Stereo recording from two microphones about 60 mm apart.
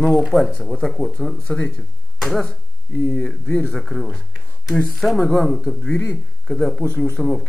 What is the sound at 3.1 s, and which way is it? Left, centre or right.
Speech, centre.